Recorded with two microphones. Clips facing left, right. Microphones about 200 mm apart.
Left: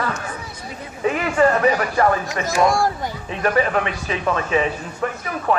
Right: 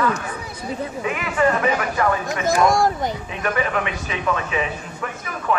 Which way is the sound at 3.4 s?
35° left (ahead or behind).